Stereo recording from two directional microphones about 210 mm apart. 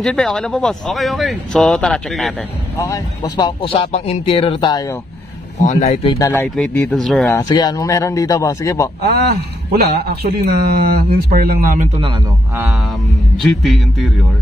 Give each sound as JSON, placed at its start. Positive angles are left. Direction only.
{"t": 0.0, "sound": "speech", "side_deg": 0}
{"t": 2.8, "sound": "speech", "side_deg": 20}
{"t": 5.6, "sound": "speech", "side_deg": 35}
{"t": 6.1, "sound": "a man's voice", "side_deg": 15}
{"t": 7.2, "sound": "a man's voice", "side_deg": 15}
{"t": 9.0, "sound": "a man's voice", "side_deg": -50}
{"t": 13.4, "sound": "speech", "side_deg": 0}